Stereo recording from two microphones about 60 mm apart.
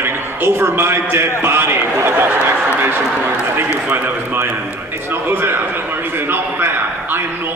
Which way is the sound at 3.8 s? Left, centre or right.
Right.